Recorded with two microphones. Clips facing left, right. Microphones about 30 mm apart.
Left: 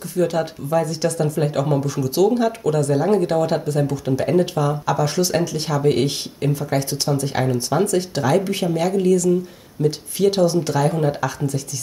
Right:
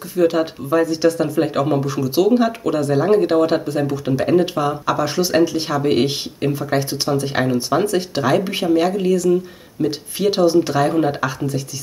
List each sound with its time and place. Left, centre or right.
0.1 s speech: centre